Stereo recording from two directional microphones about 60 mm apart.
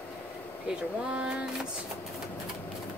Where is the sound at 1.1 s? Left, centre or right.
Centre.